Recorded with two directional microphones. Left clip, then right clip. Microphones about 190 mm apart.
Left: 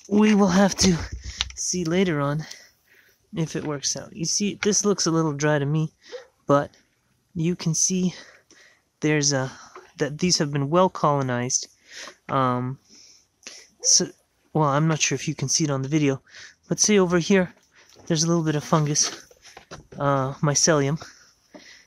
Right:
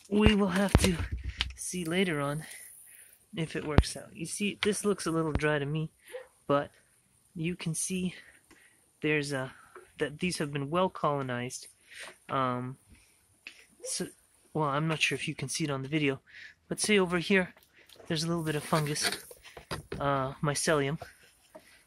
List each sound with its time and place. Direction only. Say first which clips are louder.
0.1 s speech: left 7 dB; 50° left (ahead or behind)
13.8 s speech: left 18 dB; 60° left (ahead or behind)